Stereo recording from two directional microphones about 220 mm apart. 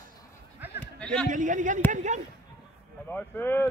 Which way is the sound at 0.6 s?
10° right (ahead or behind).